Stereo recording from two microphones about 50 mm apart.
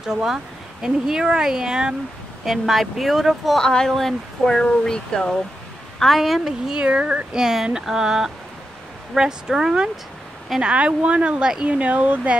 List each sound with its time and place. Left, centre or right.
0.0 s speech: centre
2.4 s speech: centre
3.5 s speech: centre
5.9 s speech: centre
6.7 s speech: centre
10.6 s speech: right